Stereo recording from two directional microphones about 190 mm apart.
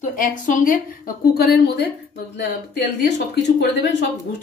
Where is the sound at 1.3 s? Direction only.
60° left (ahead or behind).